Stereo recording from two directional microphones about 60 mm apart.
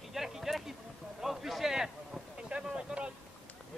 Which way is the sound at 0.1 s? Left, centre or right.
Centre.